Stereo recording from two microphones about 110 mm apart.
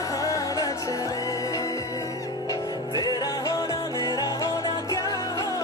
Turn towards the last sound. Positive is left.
turn(degrees=35)  # may be behind; listen again after turning